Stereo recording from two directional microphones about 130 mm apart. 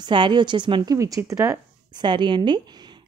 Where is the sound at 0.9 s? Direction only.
25° right (ahead or behind).